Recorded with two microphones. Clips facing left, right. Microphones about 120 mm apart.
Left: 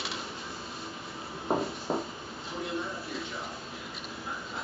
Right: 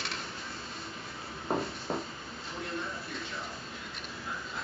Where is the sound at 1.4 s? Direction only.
20° left (ahead or behind).